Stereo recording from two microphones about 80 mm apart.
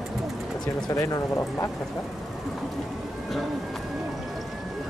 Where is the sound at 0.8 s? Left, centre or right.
Left.